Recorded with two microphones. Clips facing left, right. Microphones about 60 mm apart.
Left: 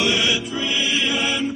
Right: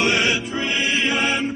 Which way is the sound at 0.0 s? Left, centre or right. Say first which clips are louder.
Right 1 dB; right.